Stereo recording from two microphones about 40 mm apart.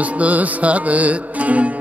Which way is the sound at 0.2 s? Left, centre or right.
Right.